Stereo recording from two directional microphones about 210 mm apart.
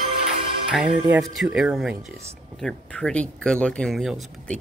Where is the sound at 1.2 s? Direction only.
Centre (ahead or behind).